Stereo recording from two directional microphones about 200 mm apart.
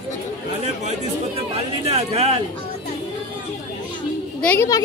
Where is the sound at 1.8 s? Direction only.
30° right (ahead or behind).